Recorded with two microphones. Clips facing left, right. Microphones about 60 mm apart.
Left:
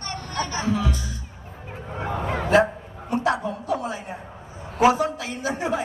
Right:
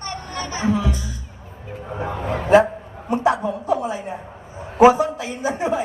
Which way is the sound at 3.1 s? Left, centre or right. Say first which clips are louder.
Right 4 dB; right.